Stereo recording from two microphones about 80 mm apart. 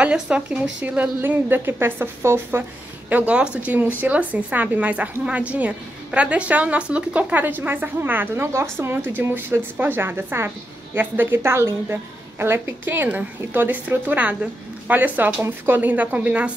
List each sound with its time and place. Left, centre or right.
0.0 s a woman's voice: centre; by 2.6 s right
3.1 s a woman's voice: centre